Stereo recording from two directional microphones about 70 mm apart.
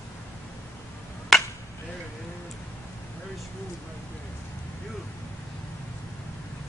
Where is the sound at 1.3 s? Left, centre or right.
Centre.